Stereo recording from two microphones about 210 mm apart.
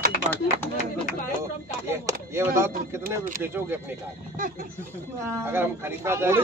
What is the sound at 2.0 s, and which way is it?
Speech, 15° right (ahead or behind).